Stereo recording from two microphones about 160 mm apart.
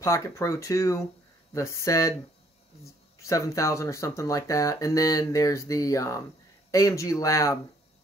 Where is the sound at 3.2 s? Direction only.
20° left (ahead or behind).